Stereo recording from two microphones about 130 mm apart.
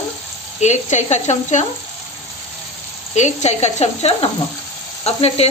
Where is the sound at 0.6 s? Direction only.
65° left (ahead or behind).